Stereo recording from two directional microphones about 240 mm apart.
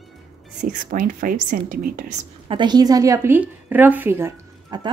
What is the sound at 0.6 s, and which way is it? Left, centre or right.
Speech, right.